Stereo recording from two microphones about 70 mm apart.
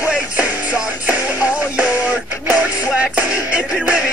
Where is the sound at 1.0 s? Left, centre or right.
Centre.